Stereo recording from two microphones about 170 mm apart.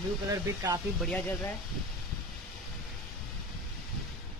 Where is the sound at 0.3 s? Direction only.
20° right (ahead or behind).